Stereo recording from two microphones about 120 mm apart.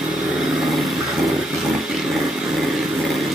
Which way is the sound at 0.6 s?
Centre (ahead or behind).